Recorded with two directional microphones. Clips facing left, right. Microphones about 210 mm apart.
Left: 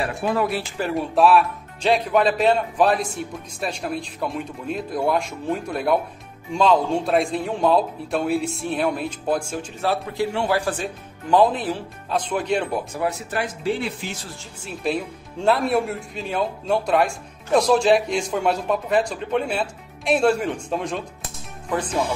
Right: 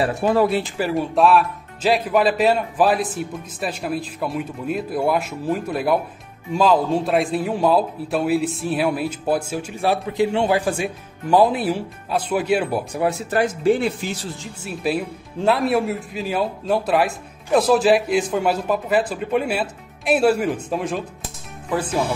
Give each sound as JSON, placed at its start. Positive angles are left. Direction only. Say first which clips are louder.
{"t": 0.0, "sound": "speech", "louder": "right 5 dB", "side_deg": -25}
{"t": 0.7, "sound": "a man's voice", "louder": "right 1 dB", "side_deg": 0}
{"t": 13.3, "sound": "speech", "louder": "right 7 dB", "side_deg": -45}
{"t": 14.4, "sound": "a man's voice", "louder": "even", "side_deg": -5}